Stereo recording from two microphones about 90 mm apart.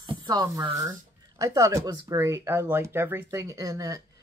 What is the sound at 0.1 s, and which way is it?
Speech, 45° right (ahead or behind).